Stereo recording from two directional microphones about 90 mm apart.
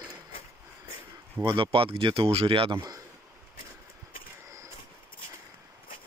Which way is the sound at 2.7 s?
45° right (ahead or behind).